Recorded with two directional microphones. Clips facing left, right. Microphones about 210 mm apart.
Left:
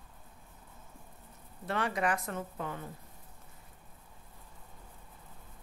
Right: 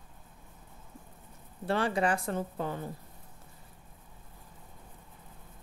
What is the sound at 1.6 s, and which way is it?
Speech, 30° right (ahead or behind).